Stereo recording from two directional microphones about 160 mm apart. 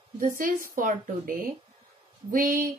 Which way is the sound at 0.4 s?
60° right (ahead or behind).